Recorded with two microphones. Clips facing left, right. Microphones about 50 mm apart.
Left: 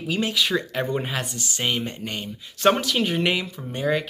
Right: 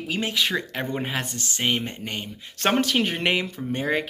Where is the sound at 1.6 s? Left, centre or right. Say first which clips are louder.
Right 1 dB; right.